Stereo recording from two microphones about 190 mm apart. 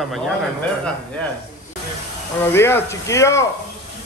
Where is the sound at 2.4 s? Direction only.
10° left (ahead or behind).